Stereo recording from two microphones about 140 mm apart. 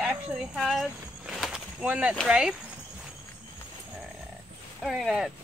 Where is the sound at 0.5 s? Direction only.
Centre (ahead or behind).